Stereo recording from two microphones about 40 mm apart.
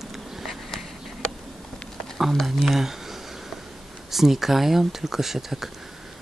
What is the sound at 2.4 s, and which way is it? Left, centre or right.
Speech, centre.